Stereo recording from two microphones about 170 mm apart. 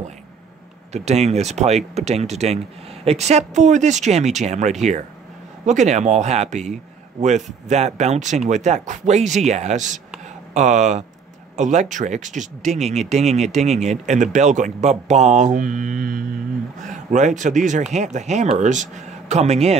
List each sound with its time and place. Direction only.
0.9 s speech: 40° right (ahead or behind)